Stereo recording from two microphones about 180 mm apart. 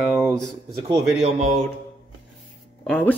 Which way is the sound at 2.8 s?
5° left (ahead or behind).